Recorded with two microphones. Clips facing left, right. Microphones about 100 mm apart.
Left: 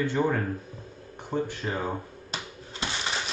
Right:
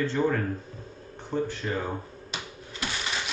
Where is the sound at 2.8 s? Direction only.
25° left (ahead or behind).